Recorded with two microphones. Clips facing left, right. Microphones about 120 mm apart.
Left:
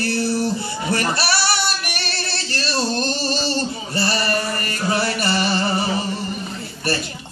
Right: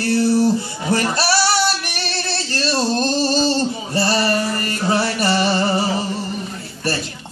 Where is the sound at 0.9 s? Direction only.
35° right (ahead or behind).